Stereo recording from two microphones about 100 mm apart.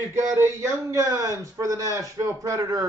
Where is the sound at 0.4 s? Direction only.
30° right (ahead or behind).